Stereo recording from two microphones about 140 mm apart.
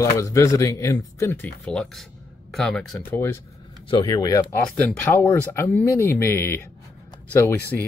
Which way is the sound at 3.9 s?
30° left (ahead or behind).